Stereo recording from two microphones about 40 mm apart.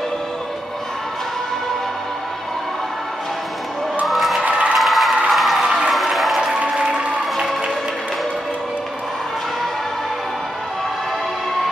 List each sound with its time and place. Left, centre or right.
4.0 s a sound: centre
4.4 s cheering: right
4.7 s crowd: centre
5.9 s applause: centre
6.8 s applause: right